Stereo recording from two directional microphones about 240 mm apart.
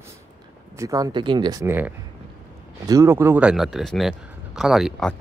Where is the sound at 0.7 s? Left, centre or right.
Centre.